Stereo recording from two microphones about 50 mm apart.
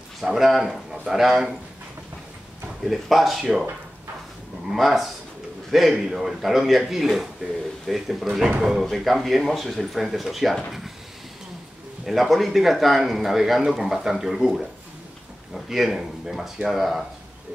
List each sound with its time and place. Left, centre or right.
0.2 s a man's voice: centre
2.8 s a man's voice: centre
4.7 s a man's voice: centre
8.3 s speech: centre
8.6 s a man's voice: centre
12.0 s a man's voice: centre